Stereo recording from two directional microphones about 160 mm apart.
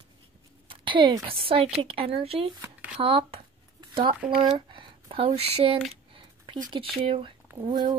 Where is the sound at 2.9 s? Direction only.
35° right (ahead or behind).